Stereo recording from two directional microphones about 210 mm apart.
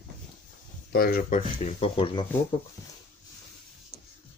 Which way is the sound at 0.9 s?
45° left (ahead or behind).